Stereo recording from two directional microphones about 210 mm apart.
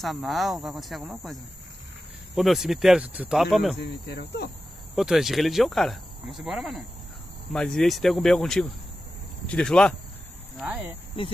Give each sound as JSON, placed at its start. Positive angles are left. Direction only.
{"t": 0.0, "sound": "speech", "side_deg": 0}
{"t": 3.8, "sound": "speech", "side_deg": 50}
{"t": 4.9, "sound": "speech", "side_deg": 0}
{"t": 10.6, "sound": "speech", "side_deg": -10}